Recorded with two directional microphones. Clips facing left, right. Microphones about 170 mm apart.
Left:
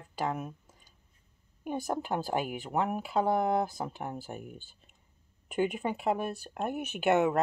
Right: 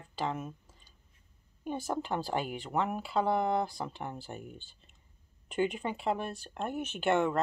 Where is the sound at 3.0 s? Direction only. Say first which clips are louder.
Left 2 dB; 45° left (ahead or behind).